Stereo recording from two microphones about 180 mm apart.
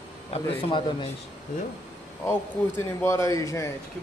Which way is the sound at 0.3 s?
30° left (ahead or behind).